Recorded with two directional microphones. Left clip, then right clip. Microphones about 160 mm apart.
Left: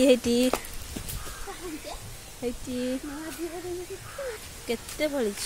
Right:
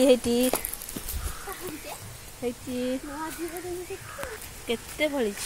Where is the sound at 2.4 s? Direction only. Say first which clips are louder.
Right 1 dB; 10° left (ahead or behind).